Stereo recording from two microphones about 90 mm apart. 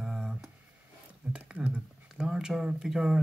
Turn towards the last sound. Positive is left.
turn(degrees=-5)  # may be behind; listen again after turning